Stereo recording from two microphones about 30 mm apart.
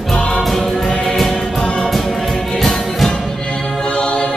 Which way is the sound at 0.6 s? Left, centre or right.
Left.